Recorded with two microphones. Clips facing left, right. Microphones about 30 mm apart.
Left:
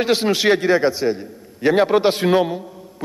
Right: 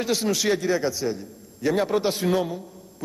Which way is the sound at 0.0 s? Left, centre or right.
Left.